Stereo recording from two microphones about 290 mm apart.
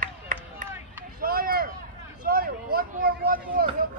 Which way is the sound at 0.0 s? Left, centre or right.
Right.